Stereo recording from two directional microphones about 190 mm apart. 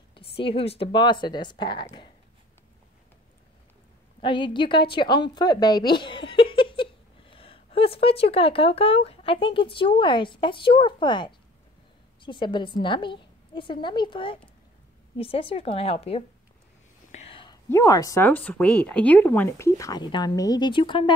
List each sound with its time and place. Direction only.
0.1 s a woman's voice: 30° left (ahead or behind)
4.2 s a woman's voice: 25° left (ahead or behind)
17.1 s whispering: 30° left (ahead or behind)
17.6 s speech: 15° left (ahead or behind)